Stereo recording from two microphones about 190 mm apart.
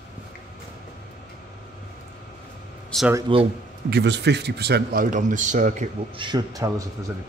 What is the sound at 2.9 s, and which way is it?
Speech, 5° left (ahead or behind).